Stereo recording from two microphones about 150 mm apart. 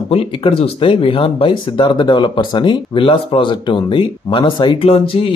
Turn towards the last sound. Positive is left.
turn(degrees=35)  # may be behind; listen again after turning